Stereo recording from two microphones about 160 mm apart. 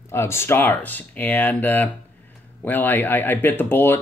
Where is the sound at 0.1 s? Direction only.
15° left (ahead or behind).